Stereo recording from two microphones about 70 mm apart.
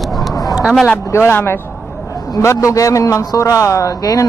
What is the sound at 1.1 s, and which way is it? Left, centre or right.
Speech, left.